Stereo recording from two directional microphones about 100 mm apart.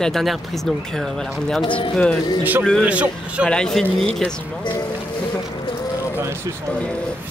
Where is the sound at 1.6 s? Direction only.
55° left (ahead or behind).